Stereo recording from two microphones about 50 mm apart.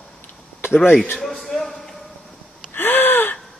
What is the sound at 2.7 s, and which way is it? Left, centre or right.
Gasp, left.